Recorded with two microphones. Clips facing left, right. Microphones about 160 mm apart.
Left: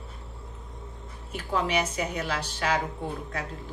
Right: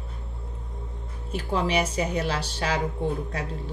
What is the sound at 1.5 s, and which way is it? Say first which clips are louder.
A woman's voice: right 2 dB; 30° right (ahead or behind).